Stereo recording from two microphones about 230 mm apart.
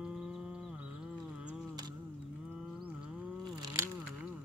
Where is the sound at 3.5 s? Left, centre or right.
Centre.